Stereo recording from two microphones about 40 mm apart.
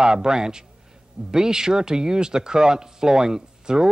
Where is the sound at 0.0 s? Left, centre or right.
Centre.